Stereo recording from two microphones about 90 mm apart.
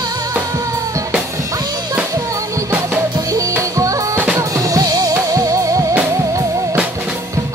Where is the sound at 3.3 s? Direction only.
40° right (ahead or behind).